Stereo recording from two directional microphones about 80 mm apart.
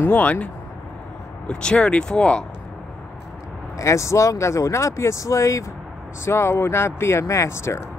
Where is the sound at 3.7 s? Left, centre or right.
Left.